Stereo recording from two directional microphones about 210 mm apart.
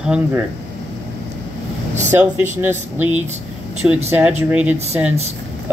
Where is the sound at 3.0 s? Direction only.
10° right (ahead or behind).